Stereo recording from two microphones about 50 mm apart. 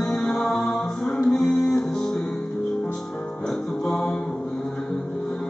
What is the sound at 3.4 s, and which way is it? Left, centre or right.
Music, centre.